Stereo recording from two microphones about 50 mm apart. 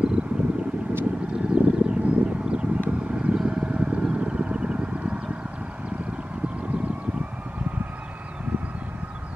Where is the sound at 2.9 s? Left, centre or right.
Right.